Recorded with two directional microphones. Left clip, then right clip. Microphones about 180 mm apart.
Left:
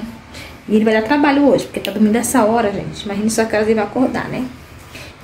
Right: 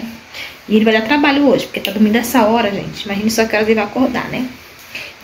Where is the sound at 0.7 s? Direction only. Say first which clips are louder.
Right 1 dB; 5° left (ahead or behind).